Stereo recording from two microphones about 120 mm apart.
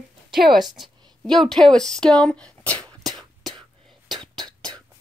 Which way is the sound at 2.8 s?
30° right (ahead or behind).